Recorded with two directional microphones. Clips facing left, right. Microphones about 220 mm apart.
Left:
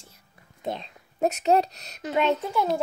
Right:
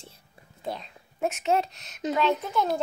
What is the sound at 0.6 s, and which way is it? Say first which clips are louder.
Speech: left 3 dB; 20° left (ahead or behind).